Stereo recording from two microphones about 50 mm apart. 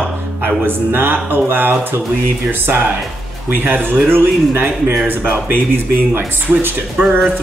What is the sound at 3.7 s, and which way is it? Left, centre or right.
Speech, right.